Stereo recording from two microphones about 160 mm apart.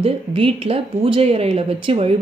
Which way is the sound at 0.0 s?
35° right (ahead or behind).